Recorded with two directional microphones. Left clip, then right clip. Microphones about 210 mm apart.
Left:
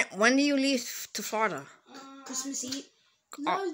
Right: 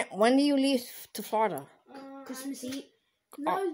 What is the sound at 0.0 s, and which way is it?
Speech, 5° right (ahead or behind).